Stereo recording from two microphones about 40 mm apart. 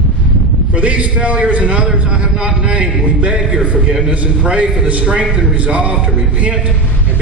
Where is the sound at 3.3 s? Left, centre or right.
Right.